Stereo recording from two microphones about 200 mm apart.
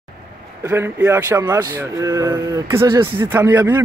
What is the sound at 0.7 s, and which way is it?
Speech, 10° right (ahead or behind).